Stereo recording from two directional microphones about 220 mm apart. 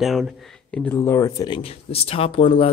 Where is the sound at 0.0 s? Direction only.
Centre (ahead or behind).